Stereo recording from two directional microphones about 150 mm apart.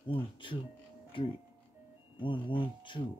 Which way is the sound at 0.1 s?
35° left (ahead or behind).